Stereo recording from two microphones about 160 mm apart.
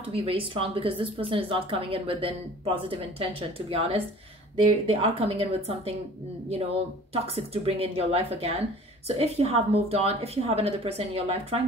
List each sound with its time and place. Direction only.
0.1 s speech: 35° right (ahead or behind)
7.3 s speech: 35° right (ahead or behind)